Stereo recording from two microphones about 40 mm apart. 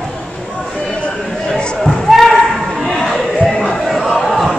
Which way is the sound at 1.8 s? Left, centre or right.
Centre.